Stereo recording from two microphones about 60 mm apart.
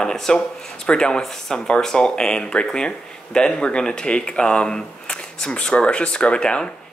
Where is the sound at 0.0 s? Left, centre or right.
Centre.